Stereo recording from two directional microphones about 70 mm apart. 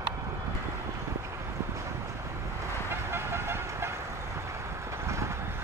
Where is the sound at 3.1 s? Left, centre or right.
Right.